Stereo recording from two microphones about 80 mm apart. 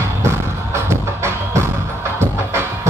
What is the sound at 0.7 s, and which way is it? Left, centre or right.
Music, right.